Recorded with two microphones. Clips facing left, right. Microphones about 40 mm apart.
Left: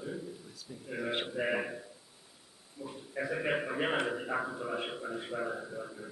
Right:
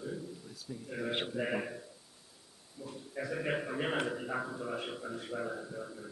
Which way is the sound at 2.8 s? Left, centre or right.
Centre.